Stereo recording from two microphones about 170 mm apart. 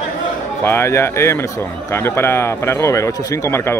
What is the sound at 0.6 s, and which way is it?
A man's voice, 15° left (ahead or behind).